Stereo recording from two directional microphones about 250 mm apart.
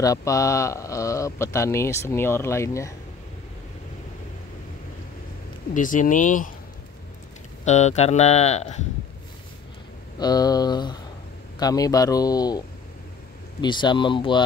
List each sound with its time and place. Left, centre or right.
0.0 s speech: centre
5.8 s speech: left
7.6 s speech: left
10.1 s speech: centre